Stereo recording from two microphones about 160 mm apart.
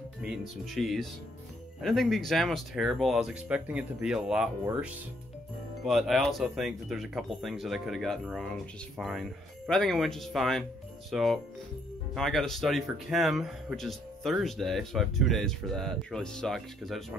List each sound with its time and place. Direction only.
0.2 s speech: 5° right (ahead or behind)
5.9 s speech: centre (ahead or behind)